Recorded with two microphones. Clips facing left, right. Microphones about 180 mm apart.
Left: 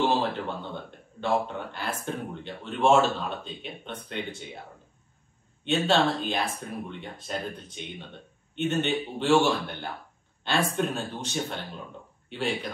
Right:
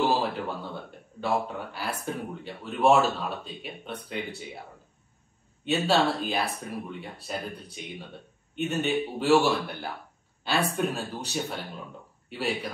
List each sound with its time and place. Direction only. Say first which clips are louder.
0.0 s a man's voice: even; 5° right (ahead or behind)
5.6 s a man's voice: even; 5° right (ahead or behind)